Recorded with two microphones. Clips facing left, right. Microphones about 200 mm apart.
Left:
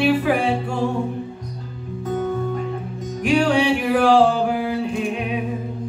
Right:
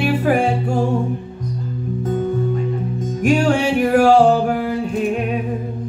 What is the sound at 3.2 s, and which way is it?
Music, 45° right (ahead or behind).